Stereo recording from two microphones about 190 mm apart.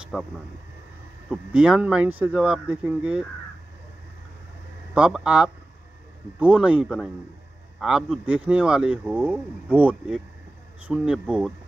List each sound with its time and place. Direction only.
0.1 s speech: 5° right (ahead or behind)
1.3 s speech: 5° right (ahead or behind)
4.9 s speech: 5° right (ahead or behind)